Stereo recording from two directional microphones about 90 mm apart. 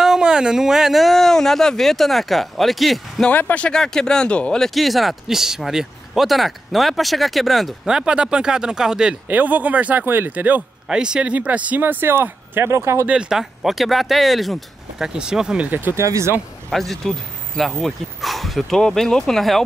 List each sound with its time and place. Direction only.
0.0 s speech: 5° right (ahead or behind)
3.3 s speech: 20° left (ahead or behind); by 9.1 s 5° right (ahead or behind)
9.3 s speech: 20° right (ahead or behind)
13.0 s speech: 10° right (ahead or behind)
16.0 s speech: 35° right (ahead or behind)
16.7 s speech: 5° left (ahead or behind)